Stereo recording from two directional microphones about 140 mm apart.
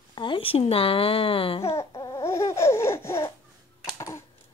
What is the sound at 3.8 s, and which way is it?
Typing, 25° left (ahead or behind).